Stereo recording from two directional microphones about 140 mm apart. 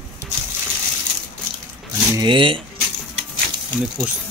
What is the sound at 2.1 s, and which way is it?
Speech, 35° right (ahead or behind).